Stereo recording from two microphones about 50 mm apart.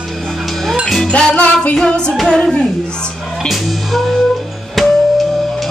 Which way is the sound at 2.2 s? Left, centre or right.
Centre.